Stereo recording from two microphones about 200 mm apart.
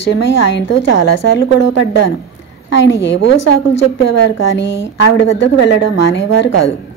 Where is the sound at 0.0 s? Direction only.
60° left (ahead or behind).